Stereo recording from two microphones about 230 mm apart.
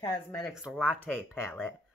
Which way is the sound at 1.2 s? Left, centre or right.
Centre.